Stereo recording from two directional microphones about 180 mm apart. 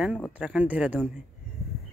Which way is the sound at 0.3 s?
5° right (ahead or behind).